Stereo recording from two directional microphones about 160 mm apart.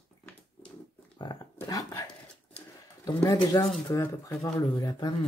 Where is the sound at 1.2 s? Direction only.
25° left (ahead or behind).